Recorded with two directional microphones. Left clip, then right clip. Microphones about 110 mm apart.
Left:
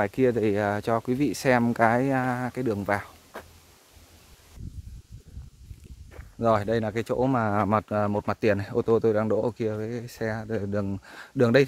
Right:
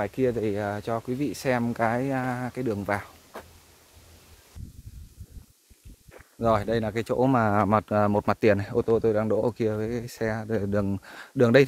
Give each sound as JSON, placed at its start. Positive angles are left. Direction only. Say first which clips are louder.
{"t": 0.0, "sound": "speech", "louder": "left 3 dB", "side_deg": 40}
{"t": 6.4, "sound": "speech", "louder": "left 1 dB", "side_deg": 20}
{"t": 7.2, "sound": "speech", "louder": "right 3 dB", "side_deg": -20}
{"t": 7.9, "sound": "speech", "louder": "right 3 dB", "side_deg": -30}
{"t": 8.8, "sound": "speech", "louder": "left 1 dB", "side_deg": 15}
{"t": 9.5, "sound": "speech", "louder": "right 2 dB", "side_deg": -25}
{"t": 11.1, "sound": "speech", "louder": "right 1 dB", "side_deg": -5}